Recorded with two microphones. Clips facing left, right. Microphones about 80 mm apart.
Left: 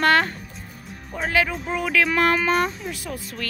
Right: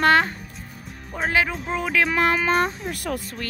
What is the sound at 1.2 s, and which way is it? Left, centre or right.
Speech, right.